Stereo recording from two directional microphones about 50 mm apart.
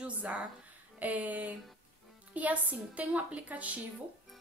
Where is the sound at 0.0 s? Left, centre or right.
Right.